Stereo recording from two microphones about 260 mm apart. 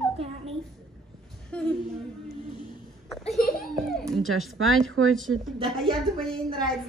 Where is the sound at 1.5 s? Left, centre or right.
Centre.